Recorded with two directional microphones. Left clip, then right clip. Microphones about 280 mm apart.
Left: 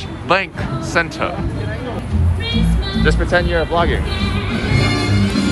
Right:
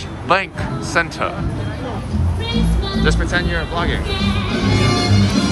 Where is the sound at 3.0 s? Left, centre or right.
Centre.